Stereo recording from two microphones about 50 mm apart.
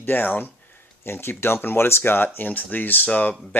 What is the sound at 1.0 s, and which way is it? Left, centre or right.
Speech, left.